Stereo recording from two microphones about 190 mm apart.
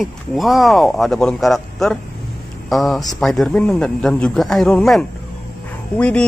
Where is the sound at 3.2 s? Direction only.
Centre (ahead or behind).